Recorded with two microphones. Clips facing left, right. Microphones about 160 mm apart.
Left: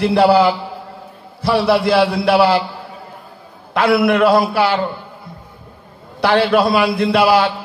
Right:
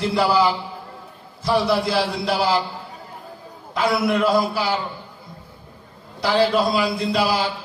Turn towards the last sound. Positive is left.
turn(degrees=65)  # may be behind; listen again after turning